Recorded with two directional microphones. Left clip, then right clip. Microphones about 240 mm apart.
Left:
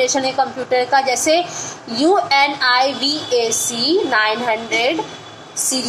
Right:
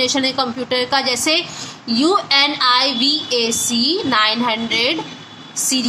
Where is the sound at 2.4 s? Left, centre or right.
Right.